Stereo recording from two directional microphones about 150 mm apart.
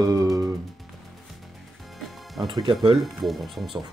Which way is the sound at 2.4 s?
30° right (ahead or behind).